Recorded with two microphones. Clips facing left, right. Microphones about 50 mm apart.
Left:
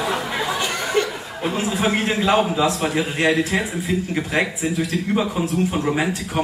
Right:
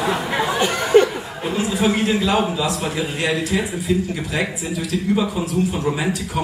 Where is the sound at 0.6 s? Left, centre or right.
Right.